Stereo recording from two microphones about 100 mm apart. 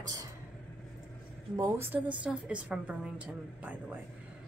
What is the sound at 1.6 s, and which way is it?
Speech, 20° right (ahead or behind).